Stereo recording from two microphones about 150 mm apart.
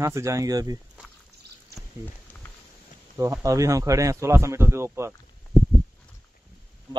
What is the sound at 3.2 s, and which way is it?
A man's voice, 20° right (ahead or behind).